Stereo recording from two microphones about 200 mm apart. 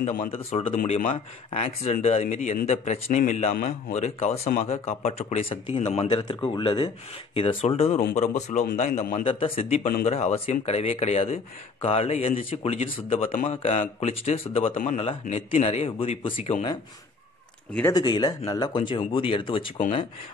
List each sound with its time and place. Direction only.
0.0 s speech: 40° left (ahead or behind)
0.3 s speech: 30° left (ahead or behind)
9.2 s speech: 30° left (ahead or behind)
14.8 s speech: 40° left (ahead or behind)
17.9 s speech: 20° left (ahead or behind)